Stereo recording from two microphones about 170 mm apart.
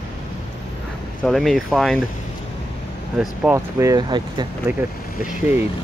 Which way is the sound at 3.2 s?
10° right (ahead or behind).